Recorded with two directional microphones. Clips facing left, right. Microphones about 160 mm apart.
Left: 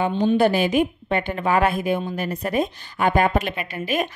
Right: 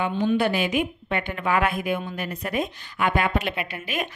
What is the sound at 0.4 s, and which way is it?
A woman's voice, 35° left (ahead or behind).